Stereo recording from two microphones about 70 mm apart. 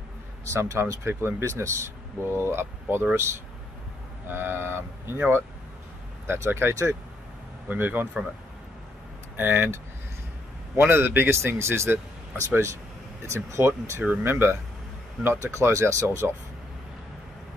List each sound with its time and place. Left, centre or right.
0.5 s speech: right
4.3 s speech: right
6.2 s speech: right
7.6 s speech: right
9.4 s speech: right
10.8 s speech: right
15.2 s speech: right